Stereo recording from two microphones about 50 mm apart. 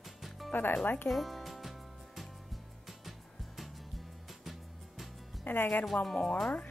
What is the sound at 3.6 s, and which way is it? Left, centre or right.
Music, centre.